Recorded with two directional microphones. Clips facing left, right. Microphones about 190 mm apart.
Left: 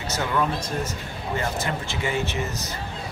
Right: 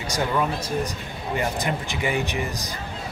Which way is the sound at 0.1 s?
15° right (ahead or behind).